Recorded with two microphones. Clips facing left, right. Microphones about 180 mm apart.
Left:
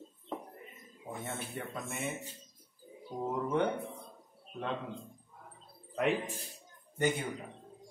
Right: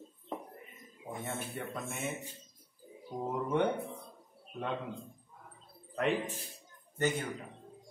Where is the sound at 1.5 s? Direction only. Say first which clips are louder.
Even; centre (ahead or behind).